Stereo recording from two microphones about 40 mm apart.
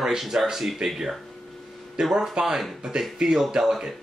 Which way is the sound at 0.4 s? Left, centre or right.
Centre.